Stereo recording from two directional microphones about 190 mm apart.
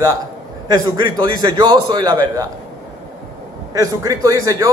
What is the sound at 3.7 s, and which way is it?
Speech, 20° right (ahead or behind).